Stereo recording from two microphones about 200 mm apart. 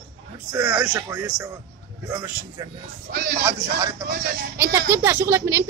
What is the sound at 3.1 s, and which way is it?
Speech, 50° right (ahead or behind).